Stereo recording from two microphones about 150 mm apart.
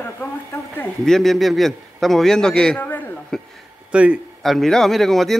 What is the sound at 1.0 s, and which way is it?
A man's voice, centre (ahead or behind).